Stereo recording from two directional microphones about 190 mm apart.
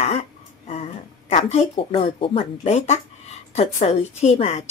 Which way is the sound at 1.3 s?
35° left (ahead or behind).